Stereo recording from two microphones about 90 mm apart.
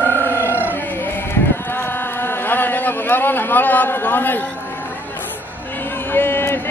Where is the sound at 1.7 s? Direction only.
25° left (ahead or behind).